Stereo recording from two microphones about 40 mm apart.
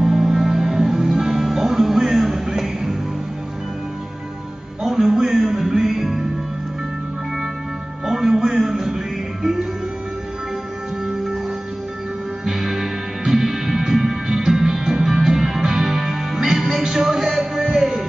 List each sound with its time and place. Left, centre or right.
0.0 s music: centre
4.8 s music: centre
8.0 s music: centre
12.4 s music: centre